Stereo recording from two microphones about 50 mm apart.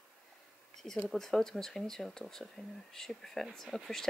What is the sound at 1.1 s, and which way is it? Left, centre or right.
Speech, centre.